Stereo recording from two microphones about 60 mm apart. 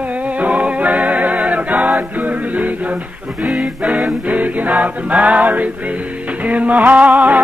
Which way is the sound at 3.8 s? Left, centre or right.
Right.